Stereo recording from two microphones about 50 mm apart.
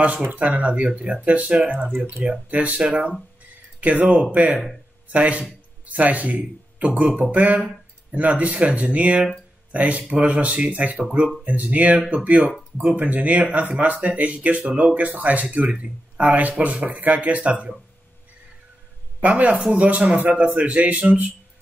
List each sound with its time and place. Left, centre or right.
0.2 s a man's voice: right
19.2 s speech: right